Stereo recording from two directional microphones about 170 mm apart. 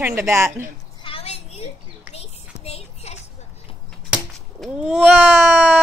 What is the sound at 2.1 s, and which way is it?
Child singing, 35° left (ahead or behind).